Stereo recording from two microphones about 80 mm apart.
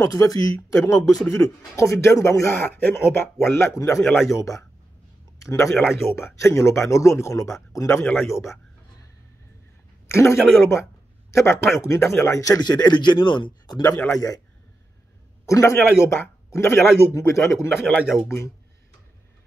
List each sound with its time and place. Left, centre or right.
0.0 s a man's voice: left
5.8 s speech: centre
6.1 s speech: left
8.0 s speech: centre
8.3 s speech: left
10.0 s a sound: left
11.3 s speech: left
12.6 s speech: left
14.0 s a man's voice: left
15.4 s speech: left